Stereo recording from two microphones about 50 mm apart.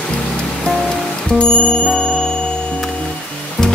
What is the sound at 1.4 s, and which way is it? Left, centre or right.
Bicycle bell, centre.